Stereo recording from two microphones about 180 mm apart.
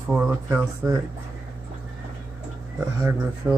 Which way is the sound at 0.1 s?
10° right (ahead or behind).